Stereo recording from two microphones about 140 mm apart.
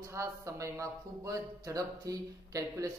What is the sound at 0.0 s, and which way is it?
Speech, 20° right (ahead or behind).